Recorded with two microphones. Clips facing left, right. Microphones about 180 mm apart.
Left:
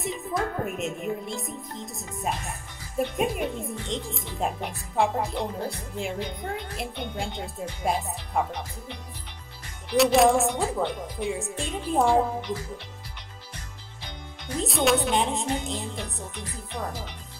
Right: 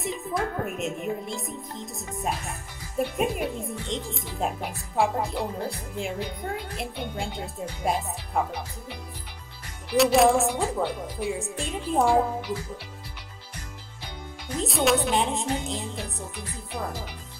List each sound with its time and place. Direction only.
0.0 s speech: centre (ahead or behind)
14.6 s speech: centre (ahead or behind)